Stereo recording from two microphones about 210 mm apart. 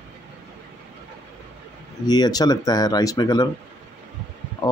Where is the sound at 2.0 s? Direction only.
20° left (ahead or behind).